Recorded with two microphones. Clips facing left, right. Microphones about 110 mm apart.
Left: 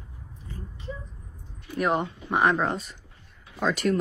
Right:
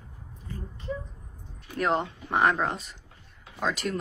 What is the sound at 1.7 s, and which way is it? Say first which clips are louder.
Speech: left 1 dB; 15° left (ahead or behind).